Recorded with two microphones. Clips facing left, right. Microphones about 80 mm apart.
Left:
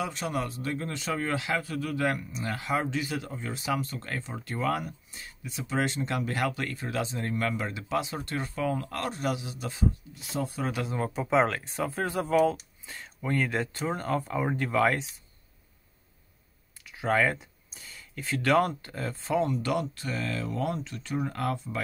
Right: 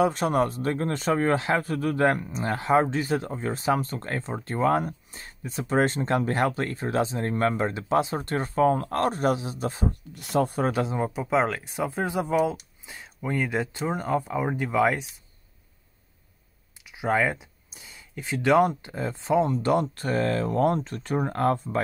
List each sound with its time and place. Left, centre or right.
0.0 s speech: right
10.6 s speech: right
11.0 s speech: centre
16.8 s speech: centre; by 21.8 s right